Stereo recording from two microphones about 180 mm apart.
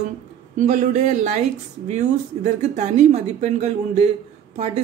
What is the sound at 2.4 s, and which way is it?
A woman's voice, 40° right (ahead or behind).